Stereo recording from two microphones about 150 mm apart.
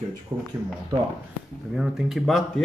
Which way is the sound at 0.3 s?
30° right (ahead or behind).